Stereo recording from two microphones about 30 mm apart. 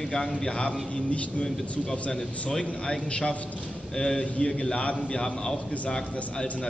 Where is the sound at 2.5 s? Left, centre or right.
Left.